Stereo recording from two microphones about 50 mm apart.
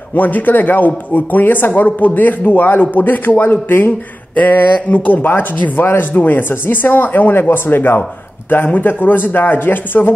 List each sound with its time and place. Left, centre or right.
0.1 s speech: left
4.4 s speech: left